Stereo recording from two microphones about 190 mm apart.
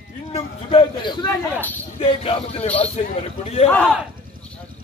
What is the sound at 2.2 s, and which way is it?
Speech, 30° left (ahead or behind).